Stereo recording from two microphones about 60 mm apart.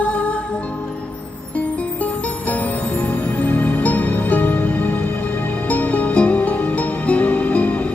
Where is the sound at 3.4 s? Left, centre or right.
Left.